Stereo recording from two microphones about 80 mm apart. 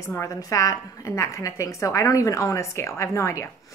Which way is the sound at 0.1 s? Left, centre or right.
Left.